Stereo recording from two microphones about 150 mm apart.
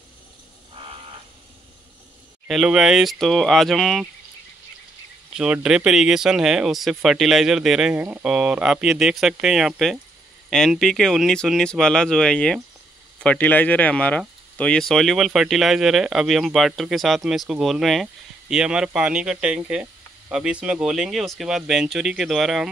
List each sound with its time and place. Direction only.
0.8 s a sound: 35° right (ahead or behind)
2.4 s speech: 5° right (ahead or behind)
5.3 s speech: 5° right (ahead or behind)